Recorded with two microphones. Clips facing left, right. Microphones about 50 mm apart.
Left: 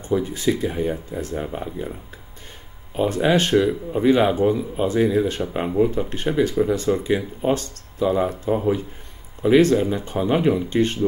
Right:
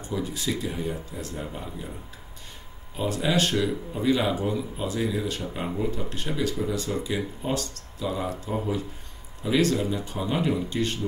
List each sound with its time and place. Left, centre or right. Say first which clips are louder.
0.0 s speech: left 9 dB; left
3.0 s speech: left 6 dB; left